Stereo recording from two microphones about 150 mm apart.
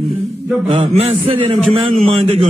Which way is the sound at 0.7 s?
40° right (ahead or behind).